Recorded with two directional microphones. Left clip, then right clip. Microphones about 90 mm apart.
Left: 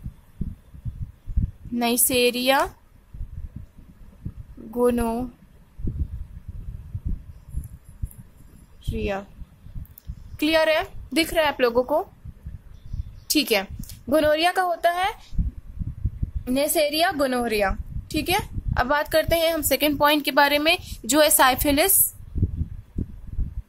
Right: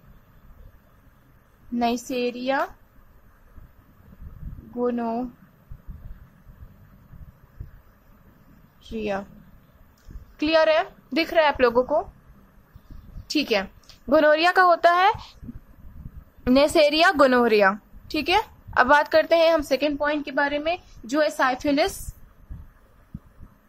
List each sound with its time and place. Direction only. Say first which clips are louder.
1.8 s speech: even; 45° left (ahead or behind)
2.0 s a woman's voice: left 6 dB; 75° left (ahead or behind)
4.7 s a woman's voice: left 4 dB; 65° left (ahead or behind)
8.8 s speech: even; 35° left (ahead or behind)
10.3 s a woman's voice: right 1 dB; 35° left (ahead or behind)
13.3 s a woman's voice: left 2 dB; 45° left (ahead or behind)
14.0 s speech: right 2 dB; 20° left (ahead or behind)
14.6 s a woman's voice: right 5 dB; centre (ahead or behind)
16.5 s a woman's voice: right 4 dB; 5° right (ahead or behind)
17.5 s a woman's voice: right 5 dB; centre (ahead or behind); by 19.8 s 20° left (ahead or behind)
19.9 s a woman's voice: left 5 dB; 85° left